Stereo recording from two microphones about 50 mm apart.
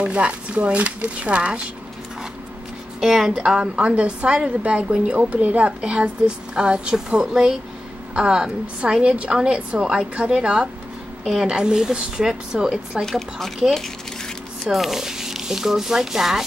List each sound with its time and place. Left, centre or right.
0.0 s a woman's voice: right
3.0 s a woman's voice: centre; by 5.8 s right
5.8 s a woman's voice: centre
13.0 s speech: centre
14.7 s a woman's voice: centre